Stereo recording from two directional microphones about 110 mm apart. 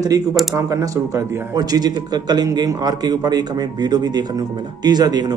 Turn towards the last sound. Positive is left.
turn(degrees=-35)  # may be behind; listen again after turning